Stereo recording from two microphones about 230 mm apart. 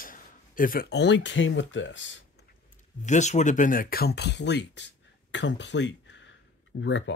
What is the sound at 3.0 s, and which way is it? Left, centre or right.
Speech, left.